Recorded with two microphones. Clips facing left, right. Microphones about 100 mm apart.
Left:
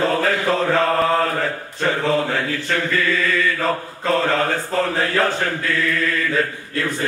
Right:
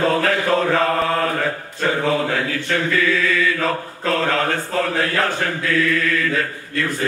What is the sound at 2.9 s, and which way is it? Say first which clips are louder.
Mantra: right 1 dB; centre (ahead or behind).